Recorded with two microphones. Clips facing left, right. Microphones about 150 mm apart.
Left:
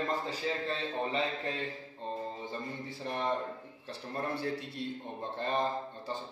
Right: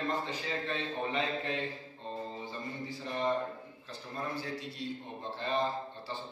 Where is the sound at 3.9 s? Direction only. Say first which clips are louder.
Left 3 dB; 60° left (ahead or behind).